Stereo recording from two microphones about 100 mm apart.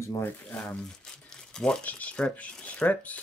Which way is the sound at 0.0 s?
30° left (ahead or behind).